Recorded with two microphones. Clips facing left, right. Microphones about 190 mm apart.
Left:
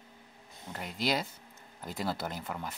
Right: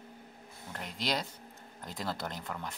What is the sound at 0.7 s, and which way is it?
Speech, 5° left (ahead or behind).